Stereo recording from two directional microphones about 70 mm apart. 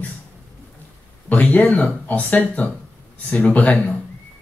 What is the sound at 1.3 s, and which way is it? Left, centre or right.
Speech, left.